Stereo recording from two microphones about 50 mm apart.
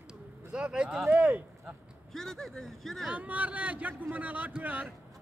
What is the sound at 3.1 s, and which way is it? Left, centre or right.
A man's voice, right.